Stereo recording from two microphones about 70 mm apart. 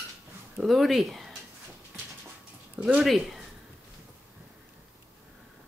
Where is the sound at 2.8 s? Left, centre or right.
Centre.